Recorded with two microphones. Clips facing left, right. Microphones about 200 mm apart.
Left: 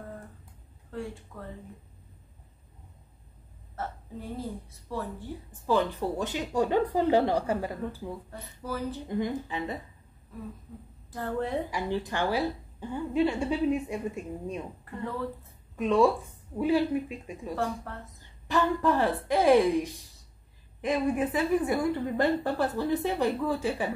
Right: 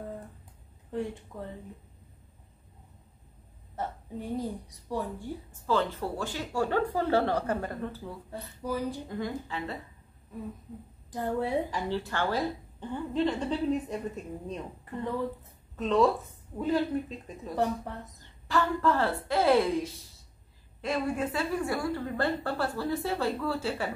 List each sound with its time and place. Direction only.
0.9 s a woman's voice: 20° right (ahead or behind)
3.7 s a woman's voice: 15° right (ahead or behind)
5.7 s a woman's voice: 15° left (ahead or behind)
8.6 s a woman's voice: 15° right (ahead or behind)
9.2 s a woman's voice: 15° left (ahead or behind)
11.1 s a woman's voice: 15° right (ahead or behind)
11.7 s a woman's voice: 15° left (ahead or behind)
15.7 s a woman's voice: 10° left (ahead or behind)